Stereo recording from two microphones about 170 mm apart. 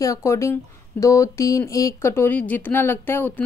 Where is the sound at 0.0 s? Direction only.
20° left (ahead or behind).